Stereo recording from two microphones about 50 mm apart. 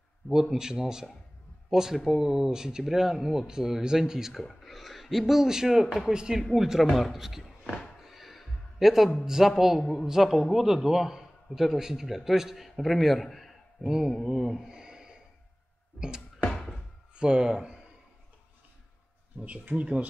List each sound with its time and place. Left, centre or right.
0.3 s a man's voice: centre
8.0 s a sound: centre
9.2 s a man's voice: centre
13.8 s a man's voice: centre
14.7 s snort: centre
17.1 s speech: centre
19.7 s speech: right